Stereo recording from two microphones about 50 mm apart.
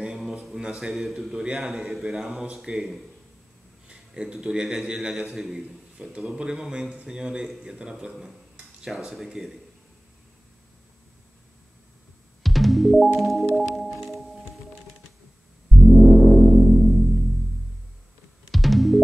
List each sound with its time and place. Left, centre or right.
0.1 s a sound: centre
0.7 s music: centre
1.3 s a man's voice: centre
1.7 s a man's voice: centre
4.1 s a man's voice: centre
5.3 s music: centre
6.2 s a man's voice: centre
12.4 s music: centre
15.9 s music: centre
18.5 s music: centre